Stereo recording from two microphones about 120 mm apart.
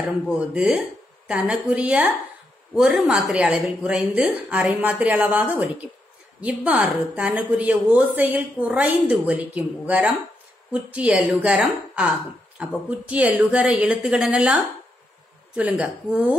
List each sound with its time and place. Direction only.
0.3 s speech: 5° right (ahead or behind)